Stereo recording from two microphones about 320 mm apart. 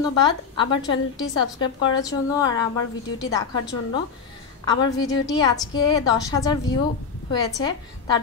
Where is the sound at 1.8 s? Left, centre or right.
Left.